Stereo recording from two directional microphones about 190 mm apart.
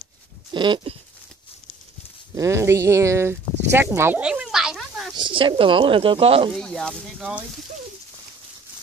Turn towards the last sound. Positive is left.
turn(degrees=-5)  # may be behind; listen again after turning